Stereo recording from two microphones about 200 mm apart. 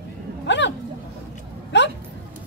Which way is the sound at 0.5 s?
60° left (ahead or behind).